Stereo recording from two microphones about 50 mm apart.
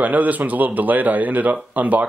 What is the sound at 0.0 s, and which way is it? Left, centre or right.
Speech, right.